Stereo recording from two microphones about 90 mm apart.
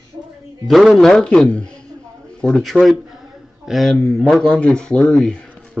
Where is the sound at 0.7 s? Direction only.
Centre (ahead or behind).